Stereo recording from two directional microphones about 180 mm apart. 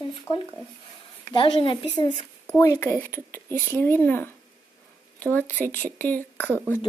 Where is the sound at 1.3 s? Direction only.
30° left (ahead or behind).